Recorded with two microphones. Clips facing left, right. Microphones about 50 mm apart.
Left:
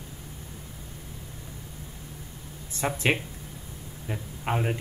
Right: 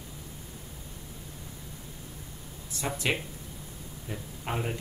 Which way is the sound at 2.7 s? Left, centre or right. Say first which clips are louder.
Left 4 dB; left.